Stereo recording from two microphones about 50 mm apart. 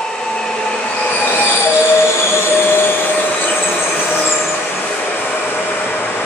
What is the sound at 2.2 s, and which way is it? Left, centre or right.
Train, left.